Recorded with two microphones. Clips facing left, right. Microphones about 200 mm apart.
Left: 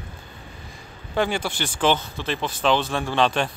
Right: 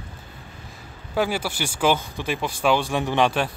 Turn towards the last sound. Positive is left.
turn(degrees=-10)  # may be behind; listen again after turning